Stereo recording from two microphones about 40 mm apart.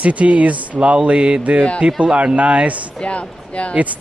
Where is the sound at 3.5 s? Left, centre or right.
Left.